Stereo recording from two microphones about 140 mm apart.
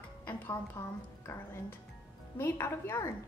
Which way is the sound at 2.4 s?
15° left (ahead or behind).